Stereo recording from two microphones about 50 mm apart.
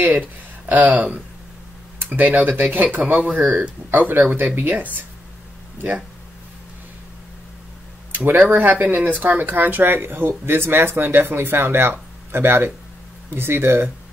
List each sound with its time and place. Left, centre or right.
0.7 s speech: right
8.3 s speech: right